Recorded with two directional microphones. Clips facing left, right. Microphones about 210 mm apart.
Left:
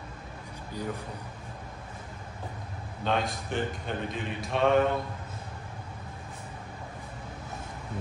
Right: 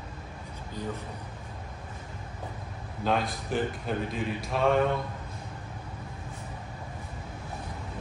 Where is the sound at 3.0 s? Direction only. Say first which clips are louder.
Right 1 dB; centre (ahead or behind).